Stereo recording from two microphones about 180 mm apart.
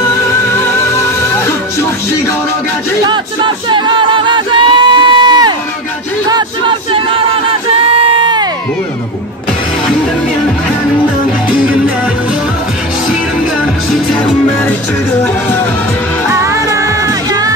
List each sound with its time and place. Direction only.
0.5 s music: 15° left (ahead or behind)
3.0 s music: 25° right (ahead or behind)
6.2 s a sound: 25° right (ahead or behind)
7.9 s crowd: 25° right (ahead or behind)
16.3 s music: 15° right (ahead or behind)